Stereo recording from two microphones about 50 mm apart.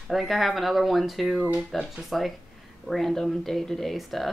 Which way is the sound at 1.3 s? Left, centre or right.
Right.